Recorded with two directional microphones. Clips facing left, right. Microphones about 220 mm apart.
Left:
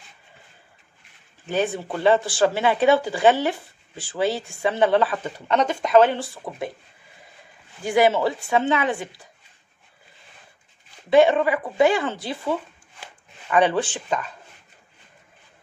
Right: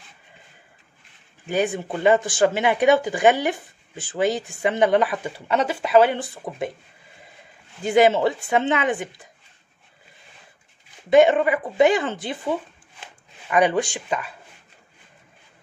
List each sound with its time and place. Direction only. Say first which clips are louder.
1.4 s speech: right 1 dB; 15° right (ahead or behind)
7.8 s speech: right 2 dB; 20° right (ahead or behind)
11.1 s speech: right 1 dB; 20° right (ahead or behind)